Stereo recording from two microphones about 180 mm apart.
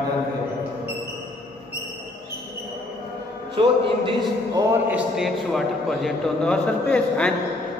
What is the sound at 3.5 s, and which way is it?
A man's voice, 25° right (ahead or behind).